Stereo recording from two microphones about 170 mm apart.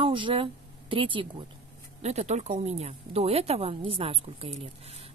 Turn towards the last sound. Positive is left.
turn(degrees=-35)  # may be behind; listen again after turning